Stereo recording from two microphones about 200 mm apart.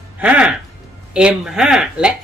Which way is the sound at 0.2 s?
5° right (ahead or behind).